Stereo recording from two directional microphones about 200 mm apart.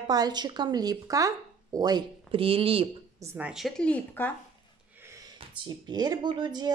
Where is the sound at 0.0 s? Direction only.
20° right (ahead or behind).